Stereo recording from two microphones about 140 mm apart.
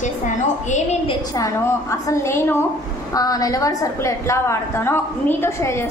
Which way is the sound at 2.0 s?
20° left (ahead or behind).